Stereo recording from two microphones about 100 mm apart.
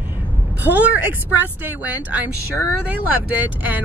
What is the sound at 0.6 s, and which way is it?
Speech, 15° right (ahead or behind).